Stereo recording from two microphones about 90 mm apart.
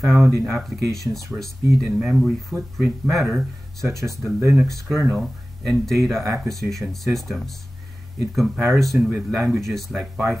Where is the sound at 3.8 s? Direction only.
35° right (ahead or behind).